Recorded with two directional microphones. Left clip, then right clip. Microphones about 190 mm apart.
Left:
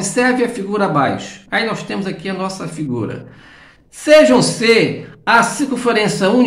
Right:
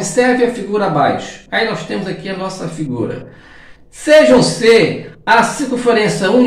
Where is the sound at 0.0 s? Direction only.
30° left (ahead or behind).